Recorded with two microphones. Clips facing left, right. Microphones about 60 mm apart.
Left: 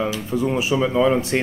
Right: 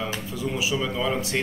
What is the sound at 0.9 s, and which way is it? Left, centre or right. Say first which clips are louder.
Speech: left 9 dB; left.